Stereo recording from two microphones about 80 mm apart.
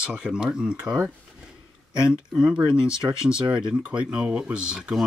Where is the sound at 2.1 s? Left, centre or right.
Centre.